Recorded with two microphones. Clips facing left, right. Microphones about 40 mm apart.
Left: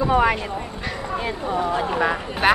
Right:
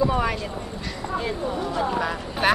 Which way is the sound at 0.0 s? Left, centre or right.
Left.